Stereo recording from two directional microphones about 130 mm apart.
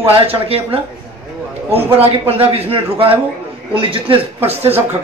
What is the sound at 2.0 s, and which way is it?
Speech, 50° right (ahead or behind).